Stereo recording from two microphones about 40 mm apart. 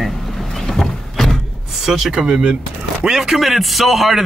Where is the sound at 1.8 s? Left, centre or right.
Centre.